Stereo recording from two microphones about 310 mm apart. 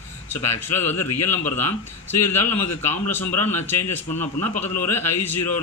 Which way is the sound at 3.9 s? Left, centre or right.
Centre.